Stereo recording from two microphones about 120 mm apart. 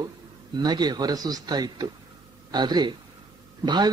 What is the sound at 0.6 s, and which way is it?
A man's voice, 35° right (ahead or behind).